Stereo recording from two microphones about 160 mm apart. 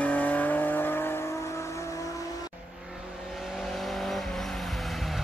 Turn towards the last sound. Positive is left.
turn(degrees=0)  # may be behind; listen again after turning